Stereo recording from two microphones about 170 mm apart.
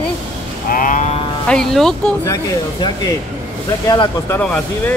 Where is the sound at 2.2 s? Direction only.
20° left (ahead or behind).